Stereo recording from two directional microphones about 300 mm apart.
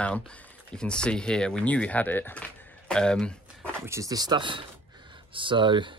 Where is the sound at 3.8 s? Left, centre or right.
Centre.